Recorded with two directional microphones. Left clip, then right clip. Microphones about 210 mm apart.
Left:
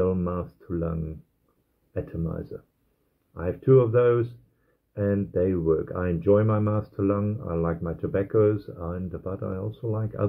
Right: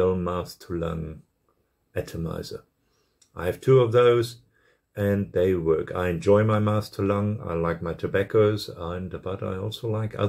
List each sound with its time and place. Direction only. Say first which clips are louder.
0.0 s speech: right 2 dB; 10° right (ahead or behind)
2.0 s speech: right 2 dB; 15° right (ahead or behind)